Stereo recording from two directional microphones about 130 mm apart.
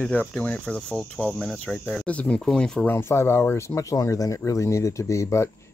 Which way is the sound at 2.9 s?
20° left (ahead or behind).